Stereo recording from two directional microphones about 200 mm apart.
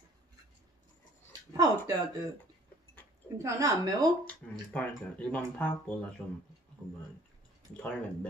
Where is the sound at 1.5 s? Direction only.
20° right (ahead or behind).